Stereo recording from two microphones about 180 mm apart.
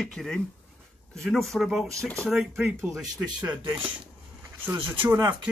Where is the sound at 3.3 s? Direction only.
25° right (ahead or behind).